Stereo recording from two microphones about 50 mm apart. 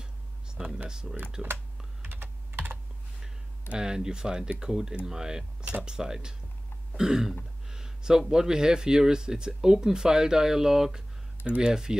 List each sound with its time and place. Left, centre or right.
0.6 s speech: centre
2.0 s computer keyboard: right
3.7 s speech: centre